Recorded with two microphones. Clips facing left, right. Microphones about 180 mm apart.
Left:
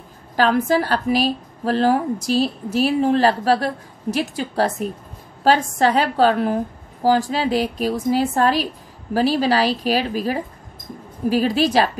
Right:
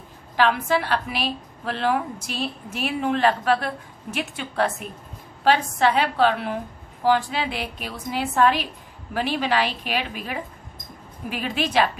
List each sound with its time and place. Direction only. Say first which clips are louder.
0.4 s a woman's voice: left 4 dB; 40° left (ahead or behind)